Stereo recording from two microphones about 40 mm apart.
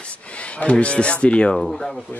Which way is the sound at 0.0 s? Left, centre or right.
Left.